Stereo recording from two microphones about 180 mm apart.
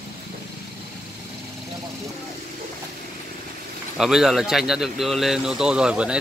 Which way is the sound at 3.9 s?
5° right (ahead or behind).